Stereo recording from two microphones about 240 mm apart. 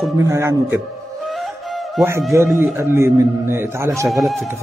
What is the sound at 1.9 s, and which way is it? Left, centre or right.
A man's voice, centre.